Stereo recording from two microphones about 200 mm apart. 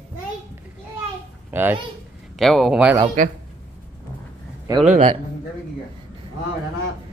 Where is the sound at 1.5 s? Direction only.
10° right (ahead or behind).